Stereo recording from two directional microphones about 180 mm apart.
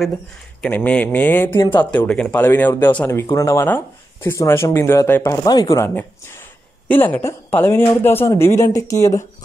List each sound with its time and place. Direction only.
0.6 s speech: 10° left (ahead or behind)